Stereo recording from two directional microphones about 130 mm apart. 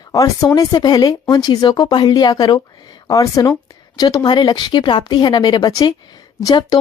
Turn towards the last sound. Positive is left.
turn(degrees=30)  # may be behind; listen again after turning